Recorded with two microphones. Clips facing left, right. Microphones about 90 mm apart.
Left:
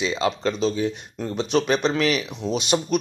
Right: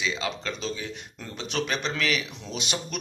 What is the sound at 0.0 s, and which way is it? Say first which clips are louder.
Speech: left 7 dB; 35° left (ahead or behind).